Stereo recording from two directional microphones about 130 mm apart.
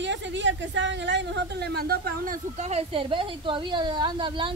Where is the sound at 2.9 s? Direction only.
40° right (ahead or behind).